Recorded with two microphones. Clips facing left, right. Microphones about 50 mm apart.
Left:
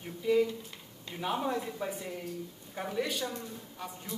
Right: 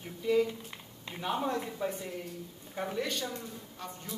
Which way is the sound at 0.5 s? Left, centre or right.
Right.